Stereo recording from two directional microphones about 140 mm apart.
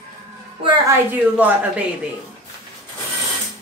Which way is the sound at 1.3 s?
10° right (ahead or behind).